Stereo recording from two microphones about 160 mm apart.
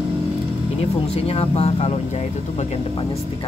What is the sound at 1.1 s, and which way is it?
Speech, 40° left (ahead or behind).